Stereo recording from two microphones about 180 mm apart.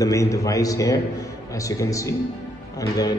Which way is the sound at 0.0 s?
15° left (ahead or behind).